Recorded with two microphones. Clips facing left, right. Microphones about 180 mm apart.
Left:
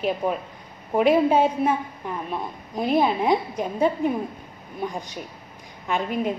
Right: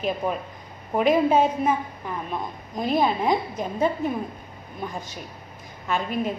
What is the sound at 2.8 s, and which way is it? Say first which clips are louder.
A woman's voice: left 2 dB; 10° left (ahead or behind).